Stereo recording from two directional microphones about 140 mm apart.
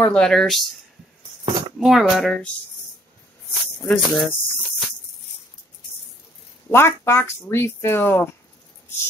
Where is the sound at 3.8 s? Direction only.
5° left (ahead or behind).